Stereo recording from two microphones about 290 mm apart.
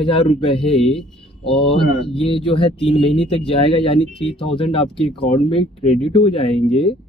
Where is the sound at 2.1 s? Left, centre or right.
Centre.